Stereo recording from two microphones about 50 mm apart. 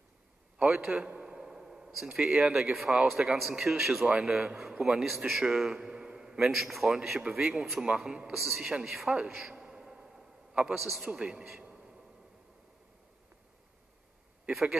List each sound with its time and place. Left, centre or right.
0.7 s speech: centre
1.1 s a sound: centre
2.1 s speech: centre
5.9 s a sound: centre
6.4 s speech: centre
9.6 s a sound: centre
10.7 s speech: centre
11.1 s speech: right
14.5 s speech: centre